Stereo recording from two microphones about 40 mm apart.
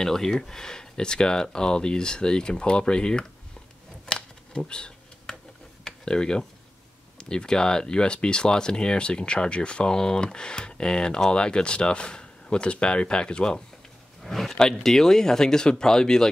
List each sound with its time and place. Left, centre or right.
0.0 s speech: centre
4.0 s a sound: centre
7.2 s speech: centre
14.2 s speech: centre